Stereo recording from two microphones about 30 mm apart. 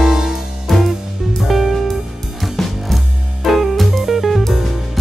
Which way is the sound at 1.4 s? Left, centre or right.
Centre.